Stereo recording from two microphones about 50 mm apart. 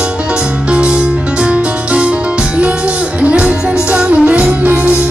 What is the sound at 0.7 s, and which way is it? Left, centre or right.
Music, right.